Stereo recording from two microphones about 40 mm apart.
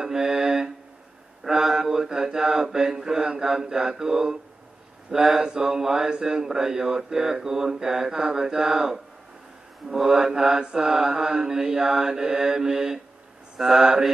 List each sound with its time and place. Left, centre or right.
0.0 s mantra: centre
1.5 s speech: centre
5.1 s speech: centre
9.9 s speech: centre